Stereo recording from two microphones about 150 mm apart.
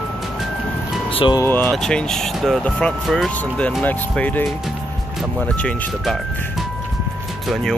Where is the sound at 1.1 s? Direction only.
35° left (ahead or behind).